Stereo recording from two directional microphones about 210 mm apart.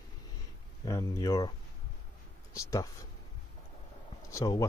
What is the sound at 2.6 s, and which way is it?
Speech, 15° left (ahead or behind).